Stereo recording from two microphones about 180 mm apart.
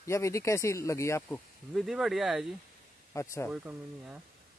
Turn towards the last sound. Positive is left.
turn(degrees=-10)  # may be behind; listen again after turning